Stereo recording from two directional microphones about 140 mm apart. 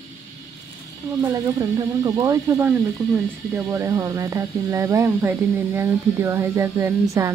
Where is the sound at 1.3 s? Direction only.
25° right (ahead or behind).